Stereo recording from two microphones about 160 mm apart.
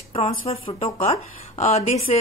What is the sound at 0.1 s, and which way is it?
A woman's voice, 35° left (ahead or behind).